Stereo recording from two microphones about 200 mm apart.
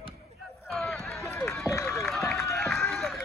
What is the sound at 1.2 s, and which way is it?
Run, 10° left (ahead or behind).